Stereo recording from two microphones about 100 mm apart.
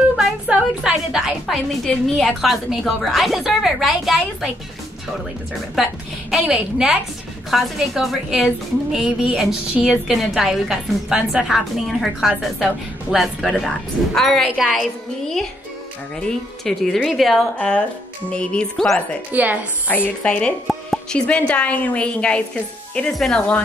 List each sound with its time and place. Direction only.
0.1 s a woman's voice: 5° right (ahead or behind)
6.3 s a woman's voice: 5° right (ahead or behind)
19.3 s a woman's voice: 15° right (ahead or behind)
19.9 s a woman's voice: 15° left (ahead or behind)